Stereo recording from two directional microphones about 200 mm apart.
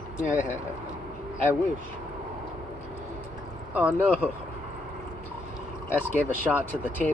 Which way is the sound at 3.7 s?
5° right (ahead or behind).